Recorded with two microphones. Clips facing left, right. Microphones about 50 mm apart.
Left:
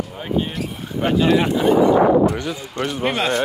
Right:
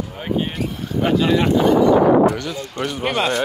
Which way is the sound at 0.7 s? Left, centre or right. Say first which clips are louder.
Right 2 dB; centre.